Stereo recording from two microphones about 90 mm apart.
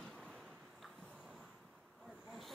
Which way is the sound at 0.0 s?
Centre (ahead or behind).